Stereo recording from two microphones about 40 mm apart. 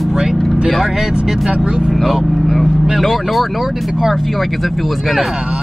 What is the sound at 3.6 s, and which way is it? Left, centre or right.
Speech, centre.